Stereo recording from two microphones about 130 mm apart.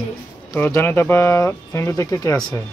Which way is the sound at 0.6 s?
20° left (ahead or behind).